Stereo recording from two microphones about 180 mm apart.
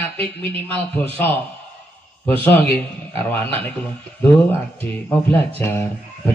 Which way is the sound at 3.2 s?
10° left (ahead or behind).